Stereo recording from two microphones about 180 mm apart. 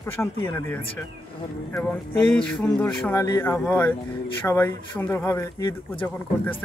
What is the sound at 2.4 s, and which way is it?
Speech, 5° left (ahead or behind).